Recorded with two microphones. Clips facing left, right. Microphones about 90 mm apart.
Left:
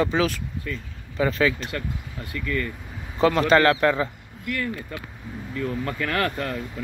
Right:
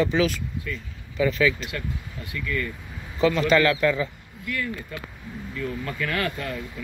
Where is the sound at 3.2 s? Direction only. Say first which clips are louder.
Left 2 dB; 45° left (ahead or behind).